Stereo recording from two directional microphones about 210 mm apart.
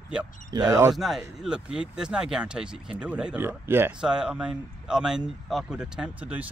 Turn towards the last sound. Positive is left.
turn(degrees=-5)  # may be behind; listen again after turning